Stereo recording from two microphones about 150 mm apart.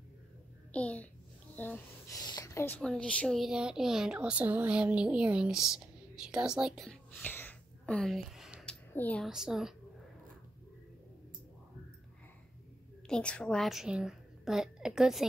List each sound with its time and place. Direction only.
0.7 s a child's voice: 10° left (ahead or behind)
2.1 s speech: 25° left (ahead or behind)
2.8 s speech: 5° left (ahead or behind)
6.9 s a sound: 10° left (ahead or behind)
8.9 s a woman's voice: 10° left (ahead or behind)
9.2 s speech: 5° right (ahead or behind)
13.1 s speech: 5° left (ahead or behind)